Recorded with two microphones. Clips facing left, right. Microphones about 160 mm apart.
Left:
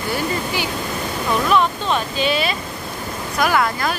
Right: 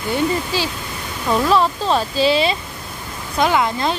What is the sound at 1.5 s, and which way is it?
Speech, 30° right (ahead or behind).